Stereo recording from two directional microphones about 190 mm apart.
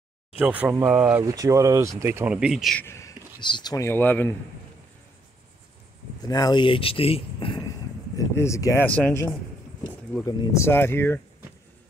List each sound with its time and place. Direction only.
0.4 s speech: 10° right (ahead or behind)
2.8 s speech: 15° left (ahead or behind)
6.2 s speech: 20° left (ahead or behind)
8.2 s speech: 15° left (ahead or behind)